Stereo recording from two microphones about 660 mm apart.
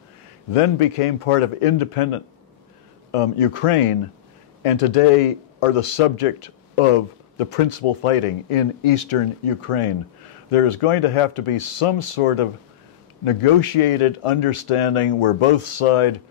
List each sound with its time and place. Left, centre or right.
0.5 s speech: left